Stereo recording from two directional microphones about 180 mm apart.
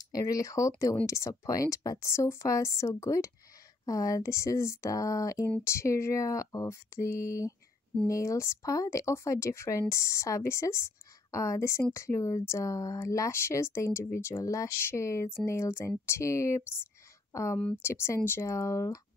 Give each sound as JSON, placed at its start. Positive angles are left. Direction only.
{"t": 0.0, "sound": "speech", "side_deg": 20}